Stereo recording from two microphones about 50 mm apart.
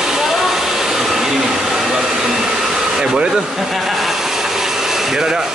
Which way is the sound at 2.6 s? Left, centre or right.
Centre.